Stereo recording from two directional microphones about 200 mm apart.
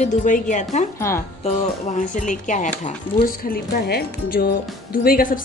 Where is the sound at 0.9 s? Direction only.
15° left (ahead or behind).